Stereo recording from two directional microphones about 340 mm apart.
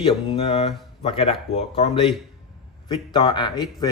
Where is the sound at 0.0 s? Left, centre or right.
Centre.